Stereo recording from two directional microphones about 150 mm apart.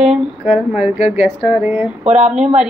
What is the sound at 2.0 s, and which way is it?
Speech, 50° right (ahead or behind).